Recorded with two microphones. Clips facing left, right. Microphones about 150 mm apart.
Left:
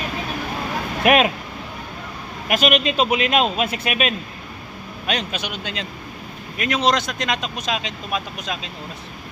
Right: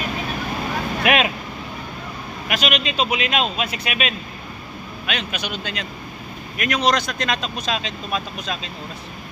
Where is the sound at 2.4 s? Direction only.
50° left (ahead or behind).